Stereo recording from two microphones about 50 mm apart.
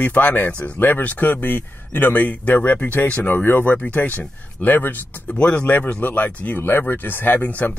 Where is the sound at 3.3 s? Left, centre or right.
Left.